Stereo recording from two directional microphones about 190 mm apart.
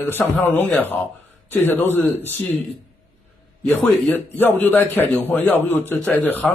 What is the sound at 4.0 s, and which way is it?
A man's voice, 10° left (ahead or behind).